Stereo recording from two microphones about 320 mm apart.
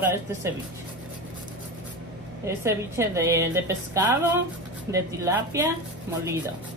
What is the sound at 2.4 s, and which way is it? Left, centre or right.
A woman's voice, centre.